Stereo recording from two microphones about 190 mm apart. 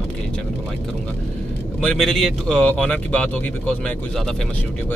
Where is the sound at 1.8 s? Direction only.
Centre (ahead or behind).